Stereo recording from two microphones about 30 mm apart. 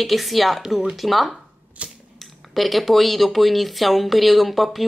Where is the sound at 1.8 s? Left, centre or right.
Right.